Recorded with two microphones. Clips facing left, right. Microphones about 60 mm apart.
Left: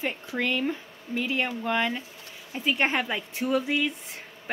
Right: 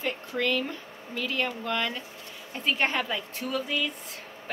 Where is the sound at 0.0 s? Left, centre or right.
Centre.